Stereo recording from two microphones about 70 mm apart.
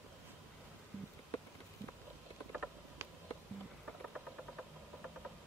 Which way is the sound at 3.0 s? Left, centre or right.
Right.